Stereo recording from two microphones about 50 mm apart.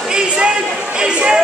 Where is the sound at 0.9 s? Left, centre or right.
Centre.